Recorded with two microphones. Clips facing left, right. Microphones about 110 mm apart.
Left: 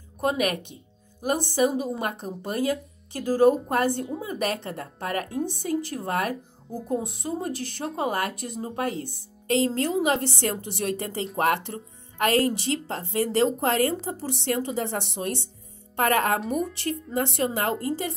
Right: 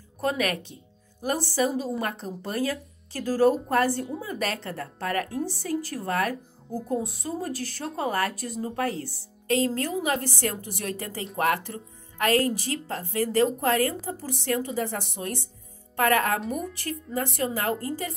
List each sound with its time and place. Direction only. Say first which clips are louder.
0.2 s speech: left 2 dB; 20° left (ahead or behind)